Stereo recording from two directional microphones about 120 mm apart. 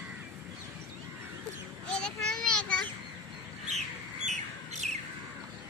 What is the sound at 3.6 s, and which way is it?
Bird, 70° right (ahead or behind).